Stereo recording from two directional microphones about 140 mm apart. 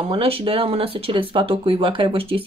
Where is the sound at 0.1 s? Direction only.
40° right (ahead or behind).